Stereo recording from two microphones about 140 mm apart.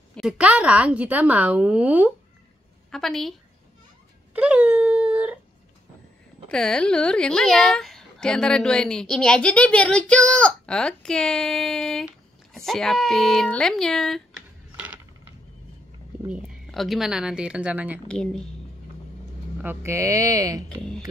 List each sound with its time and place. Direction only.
0.1 s a woman's voice: 5° right (ahead or behind)
2.9 s speech: 5° left (ahead or behind)
4.3 s wail: 10° right (ahead or behind)
6.5 s speech: 5° left (ahead or behind)
16.3 s a woman's voice: centre (ahead or behind)
18.0 s speech: 5° left (ahead or behind)
19.6 s speech: 15° right (ahead or behind)
20.6 s speech: 5° left (ahead or behind)